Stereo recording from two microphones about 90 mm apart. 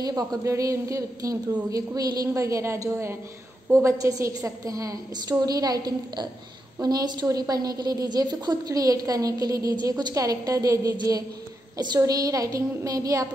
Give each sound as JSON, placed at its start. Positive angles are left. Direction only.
{"t": 0.0, "sound": "a woman's voice", "side_deg": -45}
{"t": 12.0, "sound": "a woman's voice", "side_deg": -40}